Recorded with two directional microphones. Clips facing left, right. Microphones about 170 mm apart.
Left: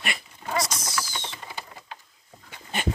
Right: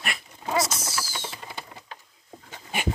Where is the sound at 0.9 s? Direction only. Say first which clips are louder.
Left 1 dB; 5° right (ahead or behind).